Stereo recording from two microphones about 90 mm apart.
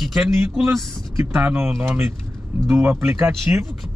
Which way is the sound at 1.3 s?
20° right (ahead or behind).